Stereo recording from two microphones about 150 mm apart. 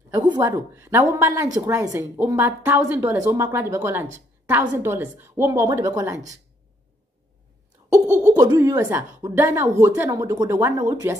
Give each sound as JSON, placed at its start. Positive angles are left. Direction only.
{"t": 0.1, "sound": "a woman's voice", "side_deg": -20}
{"t": 8.1, "sound": "speech", "side_deg": -20}